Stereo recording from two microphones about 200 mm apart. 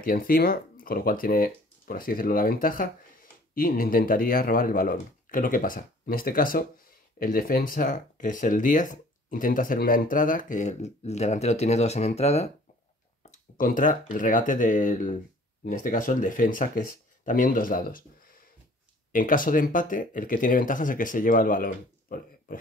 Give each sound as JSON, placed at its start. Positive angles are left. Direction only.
{"t": 0.0, "sound": "speech", "side_deg": 45}